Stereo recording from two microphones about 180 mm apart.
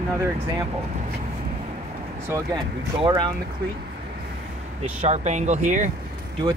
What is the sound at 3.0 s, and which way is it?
Speech, 25° right (ahead or behind).